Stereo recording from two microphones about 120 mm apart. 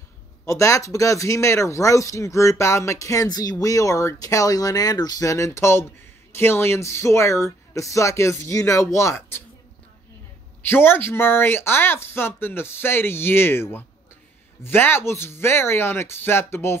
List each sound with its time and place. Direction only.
0.5 s speech: 25° left (ahead or behind)
10.6 s speech: 20° left (ahead or behind)